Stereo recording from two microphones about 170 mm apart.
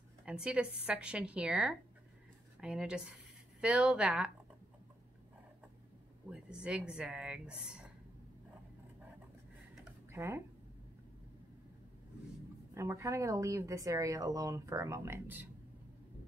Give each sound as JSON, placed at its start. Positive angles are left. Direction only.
{"t": 0.2, "sound": "speech", "side_deg": -5}
{"t": 6.3, "sound": "speech", "side_deg": -5}
{"t": 10.1, "sound": "speech", "side_deg": -15}
{"t": 12.7, "sound": "speech", "side_deg": -15}